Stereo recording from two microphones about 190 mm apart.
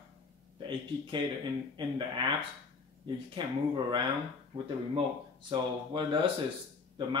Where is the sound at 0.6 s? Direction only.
25° right (ahead or behind).